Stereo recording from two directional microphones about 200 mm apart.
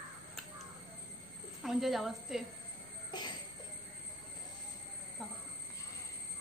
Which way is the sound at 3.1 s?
20° left (ahead or behind).